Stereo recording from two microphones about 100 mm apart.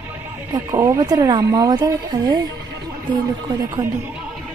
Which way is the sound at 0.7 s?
30° right (ahead or behind).